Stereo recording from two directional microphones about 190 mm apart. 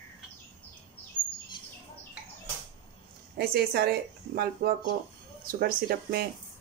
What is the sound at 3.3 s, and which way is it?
A woman's voice, 55° right (ahead or behind).